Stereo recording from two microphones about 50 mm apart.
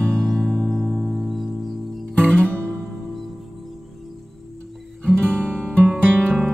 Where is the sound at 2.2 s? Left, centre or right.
Centre.